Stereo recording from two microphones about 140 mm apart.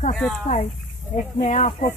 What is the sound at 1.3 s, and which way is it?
Speech, 60° left (ahead or behind).